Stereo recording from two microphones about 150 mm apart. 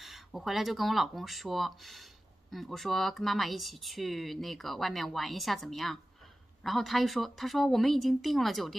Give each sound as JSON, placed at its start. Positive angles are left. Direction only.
{"t": 0.0, "sound": "speech", "side_deg": 0}